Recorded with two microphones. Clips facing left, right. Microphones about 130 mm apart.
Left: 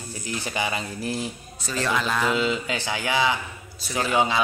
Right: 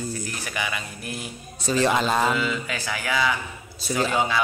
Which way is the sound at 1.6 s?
20° right (ahead or behind).